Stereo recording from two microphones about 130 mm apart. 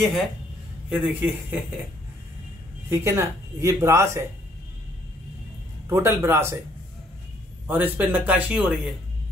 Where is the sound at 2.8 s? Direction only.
20° right (ahead or behind).